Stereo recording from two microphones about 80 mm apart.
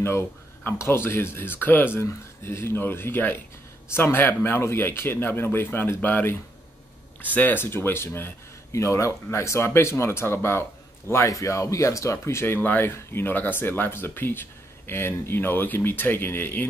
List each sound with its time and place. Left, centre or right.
0.7 s speech: left